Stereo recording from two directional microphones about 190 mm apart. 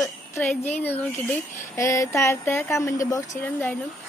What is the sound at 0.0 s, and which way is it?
Speech, 10° left (ahead or behind).